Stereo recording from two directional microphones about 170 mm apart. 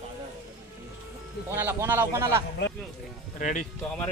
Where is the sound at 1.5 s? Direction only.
15° right (ahead or behind).